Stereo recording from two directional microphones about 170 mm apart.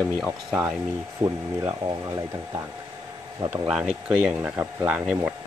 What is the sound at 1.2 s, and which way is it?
Speech, 20° right (ahead or behind).